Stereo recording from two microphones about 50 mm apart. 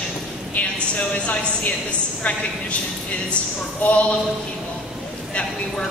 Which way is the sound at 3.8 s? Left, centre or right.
Left.